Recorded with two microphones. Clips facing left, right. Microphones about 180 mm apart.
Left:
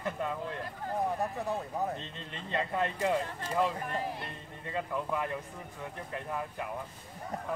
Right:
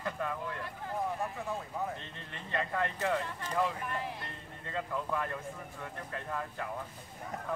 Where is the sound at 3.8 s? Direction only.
40° left (ahead or behind).